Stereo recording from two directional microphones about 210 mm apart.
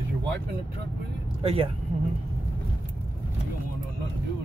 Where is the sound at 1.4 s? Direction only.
25° right (ahead or behind).